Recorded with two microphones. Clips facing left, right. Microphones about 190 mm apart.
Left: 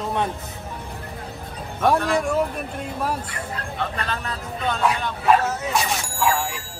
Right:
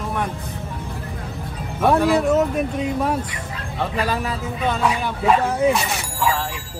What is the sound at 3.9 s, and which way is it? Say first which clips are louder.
Speech: right 6 dB; 10° right (ahead or behind).